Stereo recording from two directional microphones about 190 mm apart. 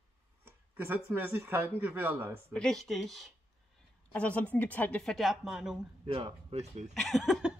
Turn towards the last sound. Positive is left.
turn(degrees=0)  # may be behind; listen again after turning